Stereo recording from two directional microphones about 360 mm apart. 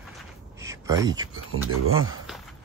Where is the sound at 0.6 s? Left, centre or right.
Centre.